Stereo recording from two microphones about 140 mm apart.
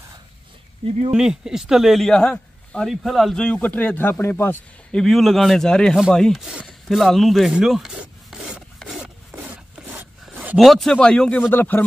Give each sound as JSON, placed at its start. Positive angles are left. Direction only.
{"t": 0.8, "sound": "speech", "side_deg": -45}
{"t": 1.1, "sound": "a man's voice", "side_deg": -5}
{"t": 4.9, "sound": "a sound", "side_deg": 0}
{"t": 10.6, "sound": "a man's voice", "side_deg": 0}